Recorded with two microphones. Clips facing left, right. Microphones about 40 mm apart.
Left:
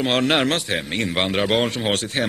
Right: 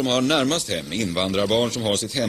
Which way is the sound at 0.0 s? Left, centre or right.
Left.